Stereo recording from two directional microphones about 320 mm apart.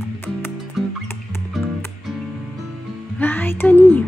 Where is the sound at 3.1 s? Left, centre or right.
Centre.